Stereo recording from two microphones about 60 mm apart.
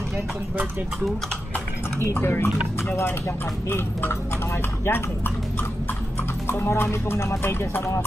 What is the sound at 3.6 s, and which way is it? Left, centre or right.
Speech, left.